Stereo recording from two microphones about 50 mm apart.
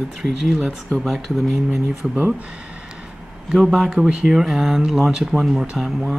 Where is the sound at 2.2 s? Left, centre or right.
Right.